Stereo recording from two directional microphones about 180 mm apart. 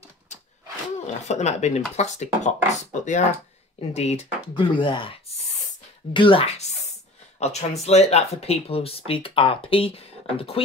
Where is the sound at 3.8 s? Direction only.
35° left (ahead or behind).